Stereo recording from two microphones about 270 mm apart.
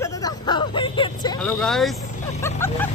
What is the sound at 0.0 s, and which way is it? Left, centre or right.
Vehicle, centre.